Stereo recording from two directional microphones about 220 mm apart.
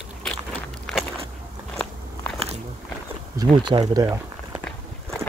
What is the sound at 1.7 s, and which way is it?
Biting, 5° left (ahead or behind).